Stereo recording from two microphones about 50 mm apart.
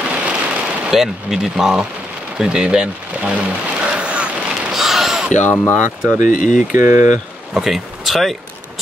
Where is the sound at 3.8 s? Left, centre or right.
Right.